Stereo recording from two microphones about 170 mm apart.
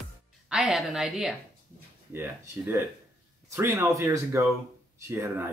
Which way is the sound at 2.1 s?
15° right (ahead or behind).